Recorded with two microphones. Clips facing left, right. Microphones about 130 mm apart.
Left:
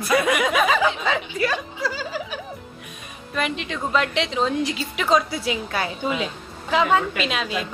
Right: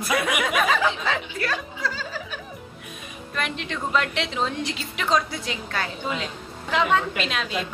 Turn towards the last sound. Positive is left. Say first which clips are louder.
# left 2 dB
turn(degrees=5)  # may be behind; listen again after turning